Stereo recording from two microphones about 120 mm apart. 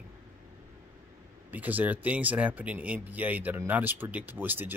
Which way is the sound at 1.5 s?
15° right (ahead or behind).